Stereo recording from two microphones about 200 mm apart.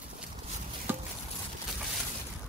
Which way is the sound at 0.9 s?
10° right (ahead or behind).